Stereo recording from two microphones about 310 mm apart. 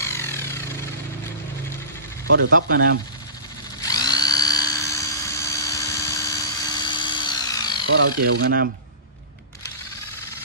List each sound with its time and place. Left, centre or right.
0.0 s a sound: centre
2.2 s speech: right
2.5 s speech: right
3.8 s dental drill: centre
8.2 s speech: right